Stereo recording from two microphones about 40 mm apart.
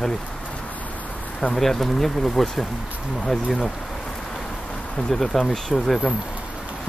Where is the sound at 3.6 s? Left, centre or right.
Centre.